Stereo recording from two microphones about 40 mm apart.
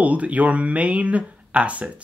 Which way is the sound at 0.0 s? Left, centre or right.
Right.